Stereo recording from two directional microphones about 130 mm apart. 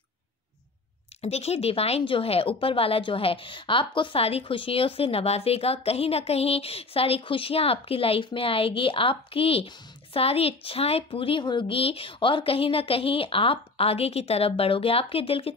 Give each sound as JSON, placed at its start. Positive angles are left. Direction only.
{"t": 1.2, "sound": "a woman's voice", "side_deg": 55}